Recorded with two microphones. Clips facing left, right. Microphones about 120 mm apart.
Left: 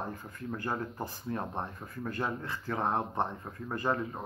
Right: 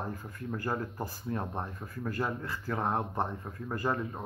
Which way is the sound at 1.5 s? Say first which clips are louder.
Even; 15° left (ahead or behind).